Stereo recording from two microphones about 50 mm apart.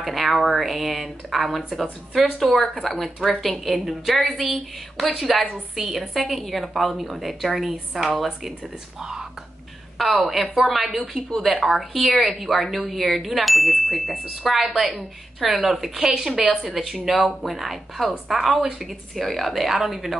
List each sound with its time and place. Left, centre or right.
0.0 s a woman's voice: centre
5.5 s a woman's voice: centre
5.9 s a woman's voice: centre
10.2 s a woman's voice: centre